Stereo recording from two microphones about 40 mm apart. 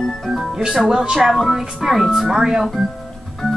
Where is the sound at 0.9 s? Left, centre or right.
Centre.